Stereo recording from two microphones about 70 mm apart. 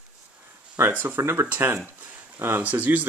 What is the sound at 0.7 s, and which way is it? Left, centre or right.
Speech, right.